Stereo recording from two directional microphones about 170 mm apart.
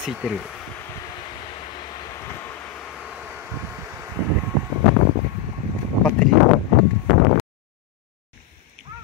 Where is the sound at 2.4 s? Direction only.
10° left (ahead or behind); by 4.1 s 10° right (ahead or behind).